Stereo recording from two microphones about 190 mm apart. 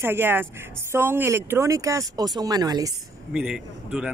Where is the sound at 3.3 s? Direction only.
5° right (ahead or behind).